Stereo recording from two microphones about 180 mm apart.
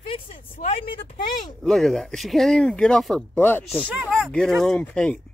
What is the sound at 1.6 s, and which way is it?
Speech, centre (ahead or behind).